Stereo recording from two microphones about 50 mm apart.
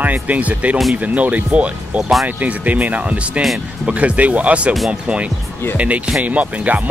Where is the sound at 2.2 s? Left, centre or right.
Right.